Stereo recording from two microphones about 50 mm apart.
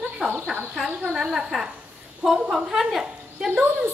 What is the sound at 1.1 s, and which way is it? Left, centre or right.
A woman's voice, centre.